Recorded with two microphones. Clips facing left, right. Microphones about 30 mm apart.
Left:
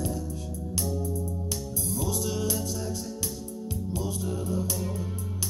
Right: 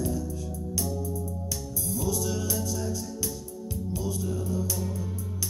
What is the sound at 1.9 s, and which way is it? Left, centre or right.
Music, left.